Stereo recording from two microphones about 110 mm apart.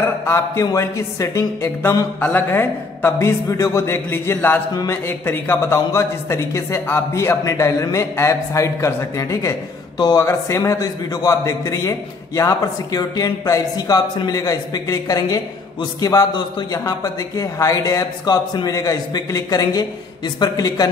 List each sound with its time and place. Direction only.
0.0 s speech: 25° left (ahead or behind)
9.9 s speech: 40° left (ahead or behind)
10.2 s a man's voice: 25° left (ahead or behind)